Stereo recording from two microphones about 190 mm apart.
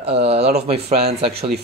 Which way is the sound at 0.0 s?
30° right (ahead or behind).